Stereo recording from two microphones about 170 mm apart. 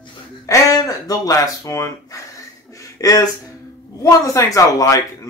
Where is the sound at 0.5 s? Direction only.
20° left (ahead or behind).